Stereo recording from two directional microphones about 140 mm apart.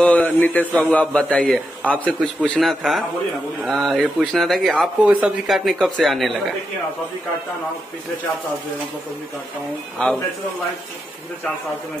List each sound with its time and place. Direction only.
0.0 s a man's voice: 10° left (ahead or behind)
10.0 s a man's voice: 5° left (ahead or behind)